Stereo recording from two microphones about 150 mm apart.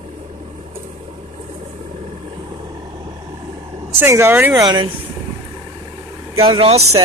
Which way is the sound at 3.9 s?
15° right (ahead or behind).